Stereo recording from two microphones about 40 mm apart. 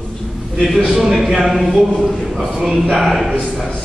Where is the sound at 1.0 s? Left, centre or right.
Centre.